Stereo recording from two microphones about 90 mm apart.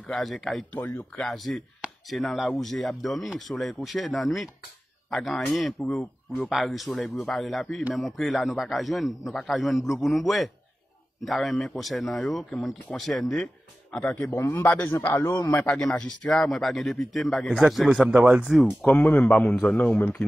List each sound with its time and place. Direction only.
0.0 s speech: centre (ahead or behind)
0.7 s a man's voice: 25° left (ahead or behind)
1.1 s speech: 5° left (ahead or behind)
5.9 s speech: 15° left (ahead or behind)
6.5 s a man's voice: centre (ahead or behind); by 15.0 s 25° left (ahead or behind)
15.3 s a man's voice: 40° left (ahead or behind)
15.6 s speech: 10° left (ahead or behind)
18.8 s a man's voice: 15° left (ahead or behind)